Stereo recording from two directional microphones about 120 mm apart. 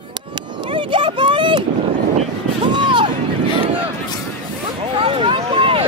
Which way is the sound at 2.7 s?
40° right (ahead or behind).